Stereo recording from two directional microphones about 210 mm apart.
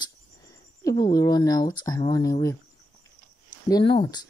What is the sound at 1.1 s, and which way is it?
Speech, 20° left (ahead or behind).